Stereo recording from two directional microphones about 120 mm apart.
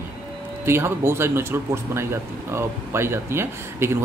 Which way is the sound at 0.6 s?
20° right (ahead or behind).